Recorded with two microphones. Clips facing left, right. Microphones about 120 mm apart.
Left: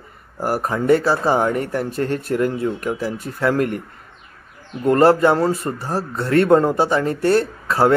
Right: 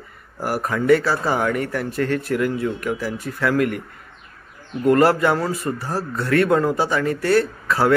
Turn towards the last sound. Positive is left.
turn(degrees=25)  # may be behind; listen again after turning